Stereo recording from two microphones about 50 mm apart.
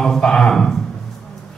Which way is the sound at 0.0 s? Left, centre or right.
Centre.